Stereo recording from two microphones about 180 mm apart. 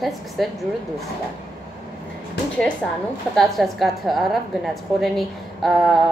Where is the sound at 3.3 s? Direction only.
Centre (ahead or behind).